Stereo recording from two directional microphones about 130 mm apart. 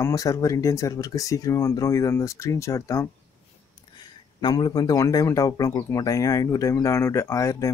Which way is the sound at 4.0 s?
35° left (ahead or behind).